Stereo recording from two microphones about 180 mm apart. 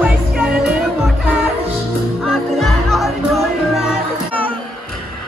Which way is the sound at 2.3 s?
Centre (ahead or behind).